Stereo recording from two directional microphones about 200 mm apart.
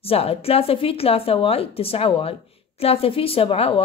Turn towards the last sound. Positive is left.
turn(degrees=30)  # may be behind; listen again after turning